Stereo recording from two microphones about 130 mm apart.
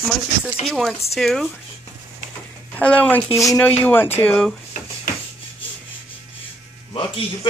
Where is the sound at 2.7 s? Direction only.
10° left (ahead or behind).